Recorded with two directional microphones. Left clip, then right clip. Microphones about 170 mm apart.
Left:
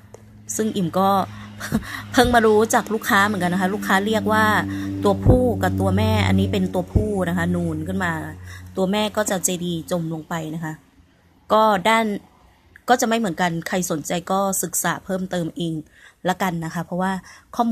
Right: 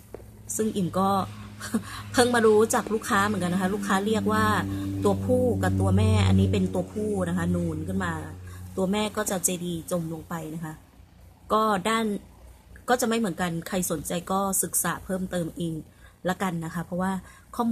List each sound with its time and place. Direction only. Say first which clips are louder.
0.6 s a woman's voice: left 5 dB; 30° left (ahead or behind)